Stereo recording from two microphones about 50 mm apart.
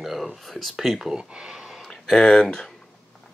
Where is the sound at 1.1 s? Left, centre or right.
Centre.